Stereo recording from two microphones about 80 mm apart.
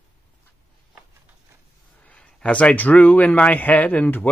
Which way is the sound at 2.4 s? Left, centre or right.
Centre.